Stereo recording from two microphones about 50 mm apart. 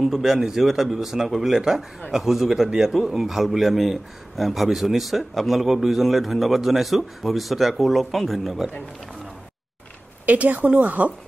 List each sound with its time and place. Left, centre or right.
0.0 s a man's voice: centre
10.2 s a woman's voice: right